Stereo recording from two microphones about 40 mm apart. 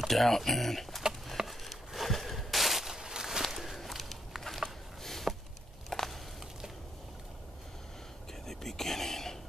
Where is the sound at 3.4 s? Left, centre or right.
Centre.